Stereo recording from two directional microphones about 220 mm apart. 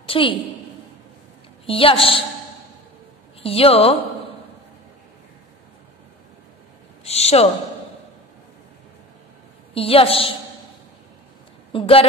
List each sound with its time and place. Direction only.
0.0 s a woman's voice: 25° left (ahead or behind)
1.7 s a woman's voice: 25° left (ahead or behind)
3.4 s a woman's voice: 25° left (ahead or behind)
7.1 s a woman's voice: 30° left (ahead or behind)
9.8 s a woman's voice: 25° left (ahead or behind)
11.7 s a woman's voice: 25° left (ahead or behind)